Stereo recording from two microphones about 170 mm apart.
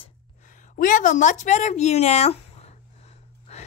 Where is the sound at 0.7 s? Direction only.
50° left (ahead or behind).